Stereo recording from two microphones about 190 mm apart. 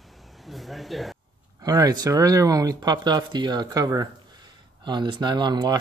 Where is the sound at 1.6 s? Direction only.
20° right (ahead or behind).